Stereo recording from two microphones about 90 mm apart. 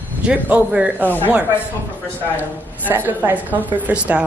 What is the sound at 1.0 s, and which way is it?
Speech, 20° left (ahead or behind).